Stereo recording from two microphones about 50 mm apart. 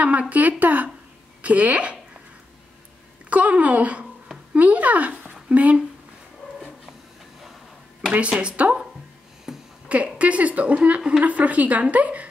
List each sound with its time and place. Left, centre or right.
0.0 s a woman's voice: right
3.3 s a woman's voice: right
8.1 s a woman's voice: right
9.5 s a sound: centre
10.1 s a woman's voice: right